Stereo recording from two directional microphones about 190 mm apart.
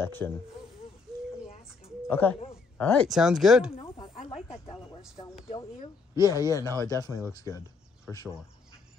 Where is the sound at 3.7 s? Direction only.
25° left (ahead or behind).